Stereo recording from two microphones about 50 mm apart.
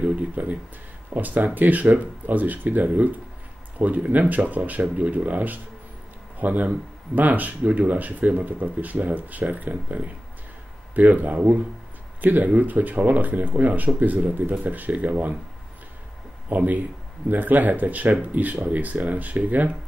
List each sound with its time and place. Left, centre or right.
0.0 s speech: right
16.4 s speech: right